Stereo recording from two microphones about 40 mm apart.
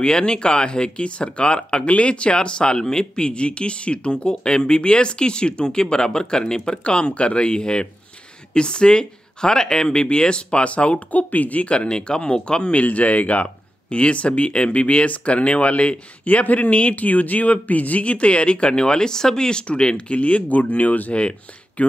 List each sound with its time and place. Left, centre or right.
0.0 s speech: left
12.7 s speech: left
16.4 s speech: left
21.1 s speech: left